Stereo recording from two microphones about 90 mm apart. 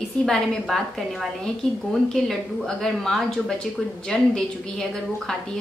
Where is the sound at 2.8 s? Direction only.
5° left (ahead or behind).